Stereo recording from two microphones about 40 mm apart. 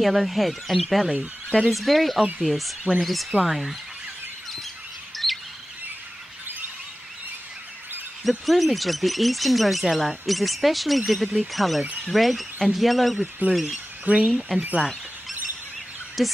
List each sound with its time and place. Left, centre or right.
0.0 s speech: centre
5.1 s bird vocalization: centre
8.2 s speech: centre
14.1 s speech: right
16.2 s speech: centre